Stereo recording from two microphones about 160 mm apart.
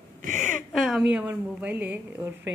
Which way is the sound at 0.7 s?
Centre (ahead or behind).